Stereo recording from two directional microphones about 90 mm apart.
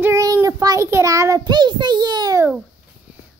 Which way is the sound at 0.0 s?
35° right (ahead or behind).